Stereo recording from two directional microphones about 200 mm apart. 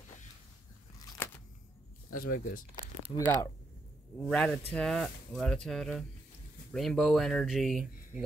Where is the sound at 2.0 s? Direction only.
45° left (ahead or behind).